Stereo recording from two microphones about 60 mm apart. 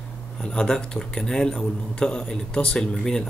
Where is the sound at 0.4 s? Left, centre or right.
Centre.